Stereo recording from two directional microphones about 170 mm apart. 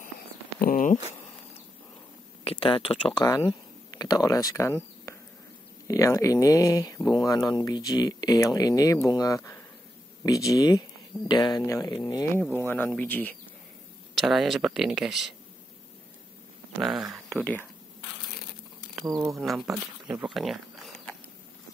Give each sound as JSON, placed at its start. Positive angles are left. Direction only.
{"t": 0.6, "sound": "speech", "side_deg": 55}
{"t": 2.4, "sound": "speech", "side_deg": 30}
{"t": 3.3, "sound": "speech", "side_deg": 20}
{"t": 14.1, "sound": "speech", "side_deg": 0}
{"t": 17.1, "sound": "speech", "side_deg": 5}
{"t": 19.2, "sound": "speech", "side_deg": 0}